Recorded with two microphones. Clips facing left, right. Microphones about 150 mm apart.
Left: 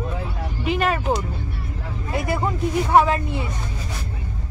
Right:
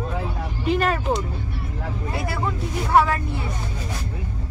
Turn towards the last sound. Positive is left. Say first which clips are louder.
# left 2 dB
turn(degrees=20)  # may be behind; listen again after turning